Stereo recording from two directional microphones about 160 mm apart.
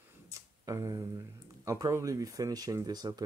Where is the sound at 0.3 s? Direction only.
20° right (ahead or behind).